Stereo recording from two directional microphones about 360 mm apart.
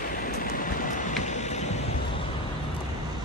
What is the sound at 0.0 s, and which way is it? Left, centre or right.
Vehicle, left.